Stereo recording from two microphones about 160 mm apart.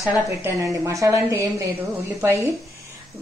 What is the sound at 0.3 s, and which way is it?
A woman's voice, 15° right (ahead or behind).